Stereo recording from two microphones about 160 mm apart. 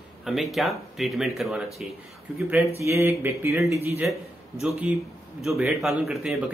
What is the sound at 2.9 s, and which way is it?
Speech, 15° right (ahead or behind).